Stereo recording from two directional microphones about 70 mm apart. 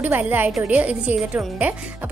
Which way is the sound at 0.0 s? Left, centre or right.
Right.